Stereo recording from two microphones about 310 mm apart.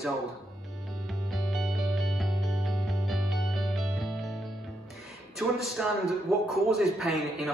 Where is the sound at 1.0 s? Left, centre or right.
Centre.